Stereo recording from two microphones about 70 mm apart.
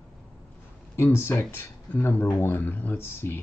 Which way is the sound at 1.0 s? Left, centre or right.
Left.